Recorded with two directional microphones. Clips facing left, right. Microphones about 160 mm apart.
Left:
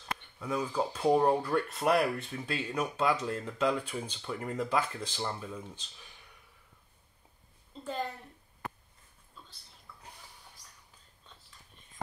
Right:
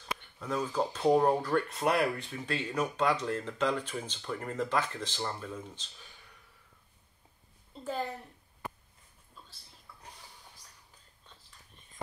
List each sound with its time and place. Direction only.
0.4 s speech: 10° left (ahead or behind)